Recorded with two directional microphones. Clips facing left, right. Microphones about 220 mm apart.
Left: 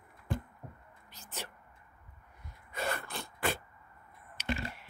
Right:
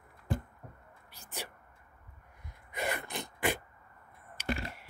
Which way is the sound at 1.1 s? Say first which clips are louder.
Right 1 dB; 10° right (ahead or behind).